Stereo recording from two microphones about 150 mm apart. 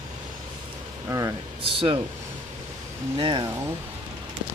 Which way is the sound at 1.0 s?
20° right (ahead or behind).